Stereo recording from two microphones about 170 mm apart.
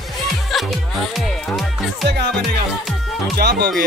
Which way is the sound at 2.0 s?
75° right (ahead or behind).